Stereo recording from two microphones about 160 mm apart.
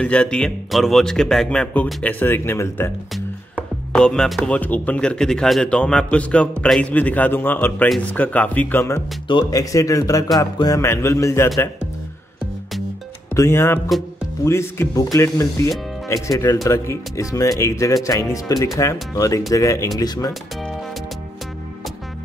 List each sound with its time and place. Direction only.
0.0 s speech: 5° left (ahead or behind)
3.9 s speech: 5° left (ahead or behind)
13.3 s speech: 15° left (ahead or behind)